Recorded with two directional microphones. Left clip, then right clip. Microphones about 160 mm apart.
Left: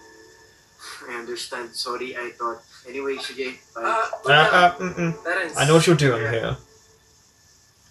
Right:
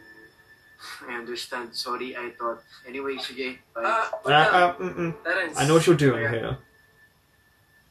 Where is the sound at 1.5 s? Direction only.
25° right (ahead or behind).